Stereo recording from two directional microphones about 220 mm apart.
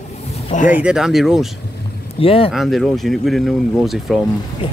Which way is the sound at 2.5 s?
Centre (ahead or behind).